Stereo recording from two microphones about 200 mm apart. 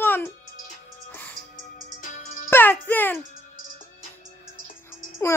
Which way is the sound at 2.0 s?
40° left (ahead or behind).